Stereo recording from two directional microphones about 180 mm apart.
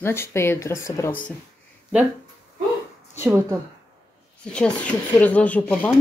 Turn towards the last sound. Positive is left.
turn(degrees=10)  # may be behind; listen again after turning